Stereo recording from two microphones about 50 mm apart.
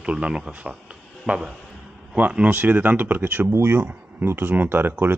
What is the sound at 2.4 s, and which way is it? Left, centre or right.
Speech, right.